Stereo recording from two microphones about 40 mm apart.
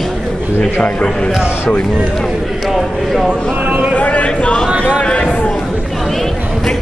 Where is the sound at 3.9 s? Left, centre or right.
Left.